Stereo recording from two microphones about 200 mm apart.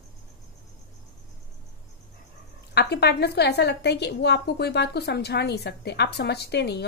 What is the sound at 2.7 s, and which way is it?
A woman's voice, 55° left (ahead or behind).